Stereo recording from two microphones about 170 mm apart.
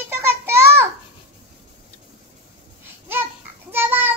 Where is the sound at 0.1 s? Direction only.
15° right (ahead or behind).